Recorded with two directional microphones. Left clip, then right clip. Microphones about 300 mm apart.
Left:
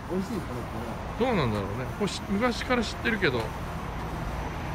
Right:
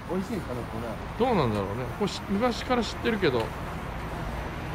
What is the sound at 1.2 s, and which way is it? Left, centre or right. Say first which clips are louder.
Speech: right 2 dB; centre.